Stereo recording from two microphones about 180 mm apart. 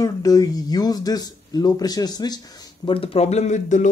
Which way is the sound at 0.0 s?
20° left (ahead or behind).